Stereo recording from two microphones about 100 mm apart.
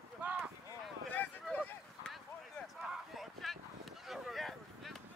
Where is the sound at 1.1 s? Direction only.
15° left (ahead or behind).